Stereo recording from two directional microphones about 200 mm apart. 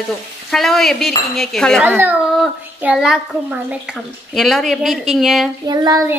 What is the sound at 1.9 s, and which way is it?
Child singing, 10° right (ahead or behind).